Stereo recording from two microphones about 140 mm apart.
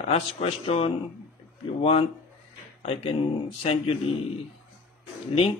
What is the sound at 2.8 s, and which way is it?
Speech, 40° left (ahead or behind).